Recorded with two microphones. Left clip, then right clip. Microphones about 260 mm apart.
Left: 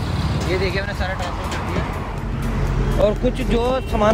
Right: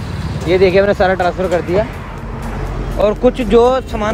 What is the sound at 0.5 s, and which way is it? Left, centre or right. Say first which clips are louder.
Speech: right 14 dB; centre.